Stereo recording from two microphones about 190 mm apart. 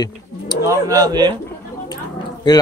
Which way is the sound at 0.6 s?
15° right (ahead or behind).